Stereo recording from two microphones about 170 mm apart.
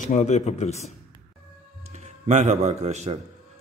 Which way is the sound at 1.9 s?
40° right (ahead or behind).